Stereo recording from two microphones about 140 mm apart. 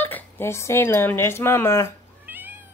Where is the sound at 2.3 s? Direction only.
15° right (ahead or behind).